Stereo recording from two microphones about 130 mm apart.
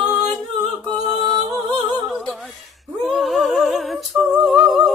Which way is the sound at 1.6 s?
35° right (ahead or behind).